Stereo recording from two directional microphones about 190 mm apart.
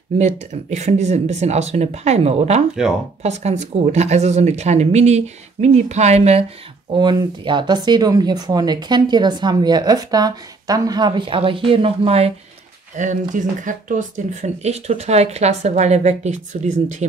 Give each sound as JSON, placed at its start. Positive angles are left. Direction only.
{"t": 0.7, "sound": "speech", "side_deg": -35}
{"t": 12.9, "sound": "speech", "side_deg": -40}